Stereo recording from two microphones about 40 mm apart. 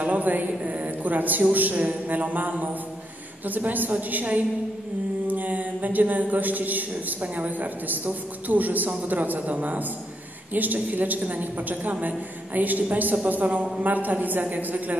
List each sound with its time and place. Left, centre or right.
0.0 s a woman's voice: right
0.5 s a woman's voice: right